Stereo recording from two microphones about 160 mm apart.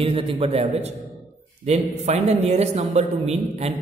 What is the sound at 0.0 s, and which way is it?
A man's voice, 35° right (ahead or behind).